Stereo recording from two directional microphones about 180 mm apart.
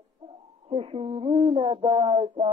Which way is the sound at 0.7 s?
30° right (ahead or behind).